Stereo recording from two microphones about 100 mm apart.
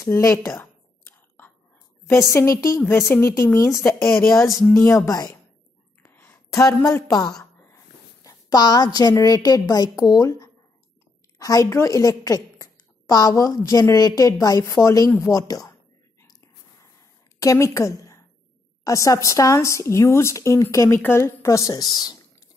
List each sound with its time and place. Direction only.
0.0 s speech: 30° left (ahead or behind)
2.0 s speech: 30° left (ahead or behind)
4.5 s speech: 5° left (ahead or behind)
4.8 s a woman's voice: 30° left (ahead or behind)
6.0 s a sound: 20° left (ahead or behind)
6.6 s a woman's voice: 35° left (ahead or behind)
17.4 s a woman's voice: 30° left (ahead or behind)